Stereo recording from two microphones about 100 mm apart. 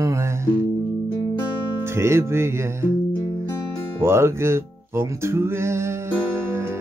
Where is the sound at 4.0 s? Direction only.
25° right (ahead or behind).